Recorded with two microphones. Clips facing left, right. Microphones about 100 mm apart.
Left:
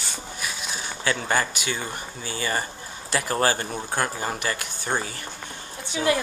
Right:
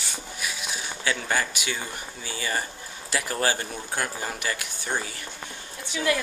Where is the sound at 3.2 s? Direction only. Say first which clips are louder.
Left 3 dB; 50° left (ahead or behind).